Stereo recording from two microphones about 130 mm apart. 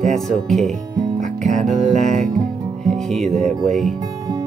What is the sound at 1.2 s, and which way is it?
Music, 70° right (ahead or behind).